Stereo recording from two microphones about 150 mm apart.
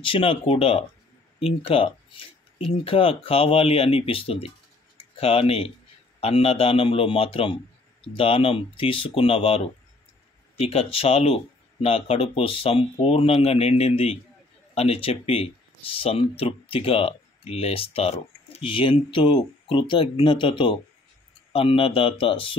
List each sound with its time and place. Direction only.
0.0 s speech: 35° left (ahead or behind)
10.6 s speech: 40° left (ahead or behind)